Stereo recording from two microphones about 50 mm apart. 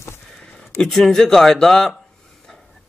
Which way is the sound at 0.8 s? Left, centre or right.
Centre.